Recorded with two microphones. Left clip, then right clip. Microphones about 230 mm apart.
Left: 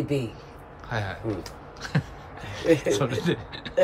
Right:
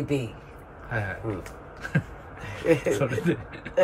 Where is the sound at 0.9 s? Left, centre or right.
Centre.